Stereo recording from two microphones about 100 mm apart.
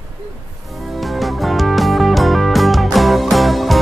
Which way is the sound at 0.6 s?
Centre (ahead or behind).